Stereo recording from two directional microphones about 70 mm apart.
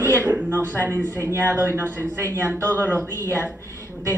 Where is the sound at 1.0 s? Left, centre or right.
Left.